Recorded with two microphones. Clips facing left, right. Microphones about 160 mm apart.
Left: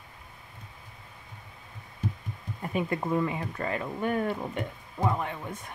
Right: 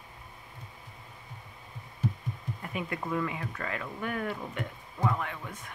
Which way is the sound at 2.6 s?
30° left (ahead or behind).